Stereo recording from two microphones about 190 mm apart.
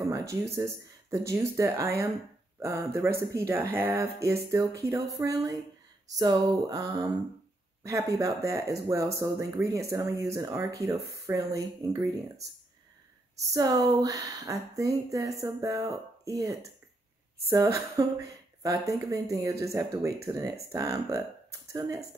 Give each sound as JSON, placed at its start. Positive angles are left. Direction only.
{"t": 0.1, "sound": "speech", "side_deg": -15}
{"t": 6.0, "sound": "a sound", "side_deg": -20}
{"t": 7.8, "sound": "speech", "side_deg": -15}
{"t": 13.4, "sound": "speech", "side_deg": -20}